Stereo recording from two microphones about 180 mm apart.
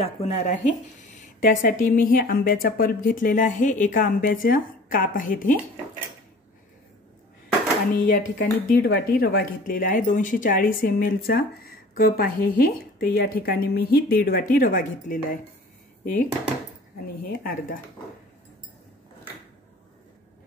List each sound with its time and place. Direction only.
0.0 s speech: 35° left (ahead or behind)
7.9 s a woman's voice: 50° left (ahead or behind)
17.2 s speech: 55° left (ahead or behind)